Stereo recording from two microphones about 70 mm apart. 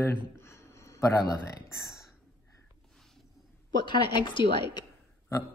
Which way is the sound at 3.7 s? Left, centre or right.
Left.